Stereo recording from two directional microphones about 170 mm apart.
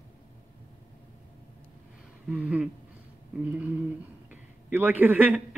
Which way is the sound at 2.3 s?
5° right (ahead or behind).